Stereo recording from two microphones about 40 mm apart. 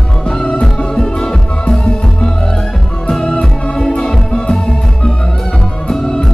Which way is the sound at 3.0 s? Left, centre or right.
Centre.